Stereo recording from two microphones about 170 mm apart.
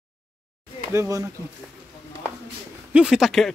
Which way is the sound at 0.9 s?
20° right (ahead or behind).